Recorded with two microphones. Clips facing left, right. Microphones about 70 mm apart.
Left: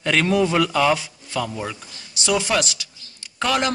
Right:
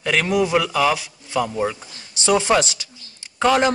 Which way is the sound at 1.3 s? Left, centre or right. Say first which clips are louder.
Right 5 dB; centre.